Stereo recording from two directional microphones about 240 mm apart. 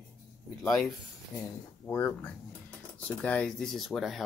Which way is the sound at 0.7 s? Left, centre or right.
Centre.